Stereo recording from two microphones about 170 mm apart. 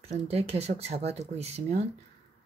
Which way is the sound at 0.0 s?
35° right (ahead or behind).